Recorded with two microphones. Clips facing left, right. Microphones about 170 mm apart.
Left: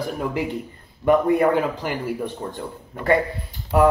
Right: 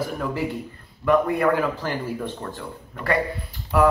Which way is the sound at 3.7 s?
20° left (ahead or behind).